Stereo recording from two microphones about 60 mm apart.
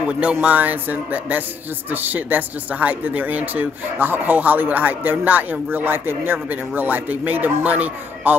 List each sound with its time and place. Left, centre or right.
0.0 s speech: centre